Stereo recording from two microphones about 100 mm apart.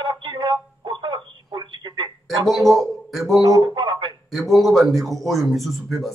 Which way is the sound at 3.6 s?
50° right (ahead or behind).